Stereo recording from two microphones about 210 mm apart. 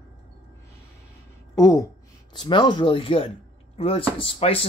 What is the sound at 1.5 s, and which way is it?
Speech, 15° left (ahead or behind).